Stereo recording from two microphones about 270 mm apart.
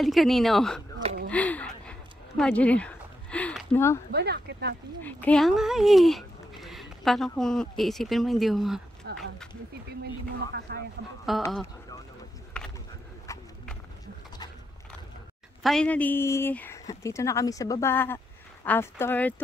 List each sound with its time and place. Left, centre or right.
0.0 s speech: centre
1.3 s a sound: centre
4.1 s speech: right
5.0 s speech: centre
9.1 s speech: right
10.7 s speech: right
11.4 s speech: centre
13.3 s horse: centre
15.6 s a woman's voice: centre